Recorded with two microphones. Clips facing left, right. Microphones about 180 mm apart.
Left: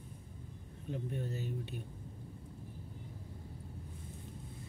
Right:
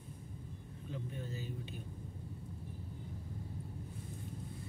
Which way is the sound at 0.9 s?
60° left (ahead or behind).